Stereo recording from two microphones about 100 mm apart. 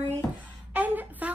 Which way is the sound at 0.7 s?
15° right (ahead or behind).